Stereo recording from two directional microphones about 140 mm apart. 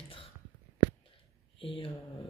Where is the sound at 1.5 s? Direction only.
40° left (ahead or behind).